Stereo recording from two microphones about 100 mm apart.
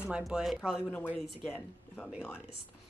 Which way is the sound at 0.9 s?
15° left (ahead or behind).